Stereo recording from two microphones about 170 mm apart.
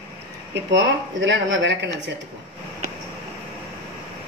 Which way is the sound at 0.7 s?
90° right.